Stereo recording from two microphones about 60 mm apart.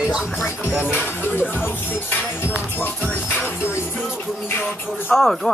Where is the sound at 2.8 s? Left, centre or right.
Left.